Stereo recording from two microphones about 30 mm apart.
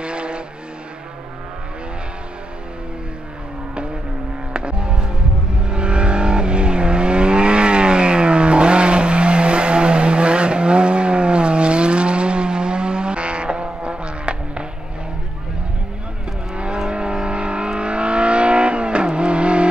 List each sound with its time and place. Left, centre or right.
0.0 s vehicle: right
4.6 s vehicle: right
16.5 s vehicle: right